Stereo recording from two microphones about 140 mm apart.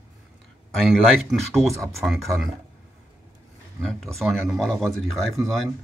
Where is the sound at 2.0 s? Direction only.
Centre (ahead or behind).